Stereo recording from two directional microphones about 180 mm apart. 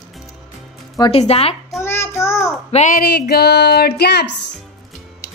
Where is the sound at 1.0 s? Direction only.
35° left (ahead or behind).